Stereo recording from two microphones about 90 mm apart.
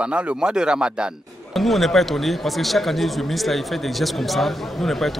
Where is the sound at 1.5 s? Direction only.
Centre (ahead or behind).